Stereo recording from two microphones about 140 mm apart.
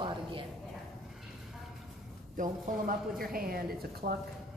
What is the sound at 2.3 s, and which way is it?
Speech, 80° right.